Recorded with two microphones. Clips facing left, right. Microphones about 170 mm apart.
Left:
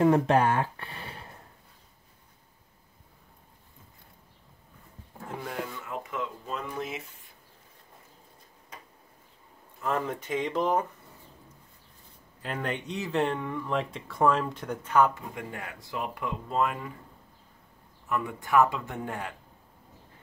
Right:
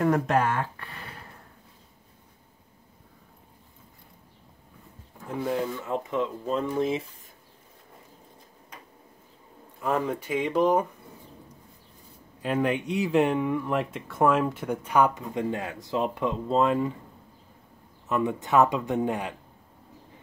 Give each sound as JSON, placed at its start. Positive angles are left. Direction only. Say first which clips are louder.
{"t": 0.0, "sound": "speech", "louder": "left 2 dB", "side_deg": 30}
{"t": 5.8, "sound": "speech", "louder": "right 7 dB", "side_deg": -30}
{"t": 9.8, "sound": "speech", "louder": "right 3 dB", "side_deg": -15}
{"t": 12.4, "sound": "speech", "louder": "right 7 dB", "side_deg": -10}
{"t": 18.0, "sound": "speech", "louder": "right 5 dB", "side_deg": -20}